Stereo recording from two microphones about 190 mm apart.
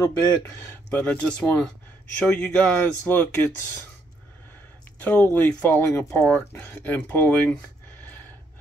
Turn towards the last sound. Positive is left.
turn(degrees=10)  # may be behind; listen again after turning